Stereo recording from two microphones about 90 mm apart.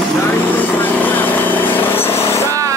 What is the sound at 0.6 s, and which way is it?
Vehicle, 20° left (ahead or behind).